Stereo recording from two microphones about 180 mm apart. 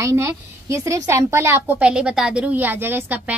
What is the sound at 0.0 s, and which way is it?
A woman's voice, 15° right (ahead or behind).